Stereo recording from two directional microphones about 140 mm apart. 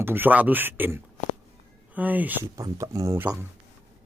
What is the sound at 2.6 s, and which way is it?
Speech, 25° right (ahead or behind).